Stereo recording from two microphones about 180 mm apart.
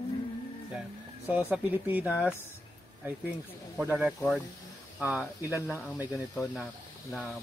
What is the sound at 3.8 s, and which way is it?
A man's voice, 10° right (ahead or behind).